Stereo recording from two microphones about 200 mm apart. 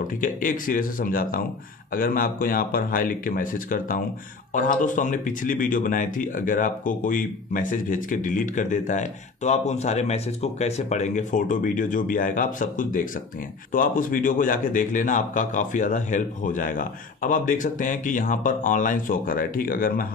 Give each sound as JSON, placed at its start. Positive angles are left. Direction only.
{"t": 0.2, "sound": "speech", "side_deg": 45}